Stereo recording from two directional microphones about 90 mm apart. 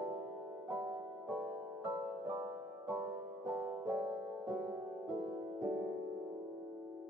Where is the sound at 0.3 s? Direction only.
10° right (ahead or behind).